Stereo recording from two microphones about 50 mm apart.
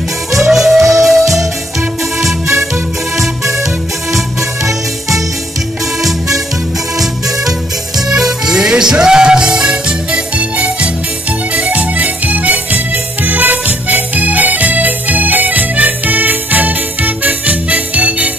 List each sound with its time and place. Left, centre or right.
0.4 s music: centre
6.0 s music: centre; by 18.3 s right